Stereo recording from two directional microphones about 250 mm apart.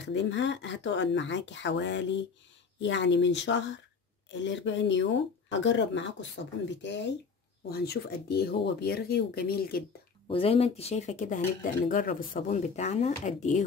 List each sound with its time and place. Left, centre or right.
0.0 s speech: left
10.2 s speech: left